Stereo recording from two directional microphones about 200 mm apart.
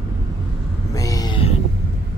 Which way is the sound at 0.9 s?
15° left (ahead or behind).